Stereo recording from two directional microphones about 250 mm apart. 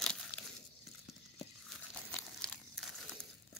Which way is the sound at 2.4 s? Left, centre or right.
Centre.